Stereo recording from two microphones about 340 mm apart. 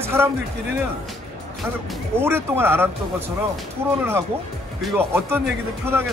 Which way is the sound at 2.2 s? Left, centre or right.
Centre.